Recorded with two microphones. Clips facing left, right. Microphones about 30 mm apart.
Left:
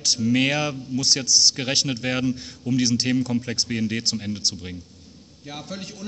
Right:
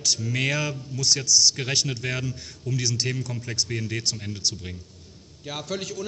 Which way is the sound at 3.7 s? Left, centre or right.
Left.